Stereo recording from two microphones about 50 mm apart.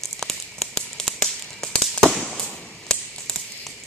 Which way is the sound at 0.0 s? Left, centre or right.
Centre.